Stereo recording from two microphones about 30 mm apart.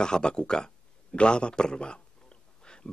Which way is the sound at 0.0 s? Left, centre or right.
Left.